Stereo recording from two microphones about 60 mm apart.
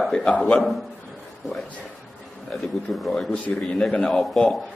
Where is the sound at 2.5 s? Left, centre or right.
Centre.